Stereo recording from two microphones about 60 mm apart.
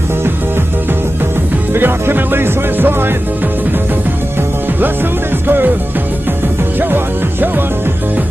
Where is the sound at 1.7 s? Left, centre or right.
Right.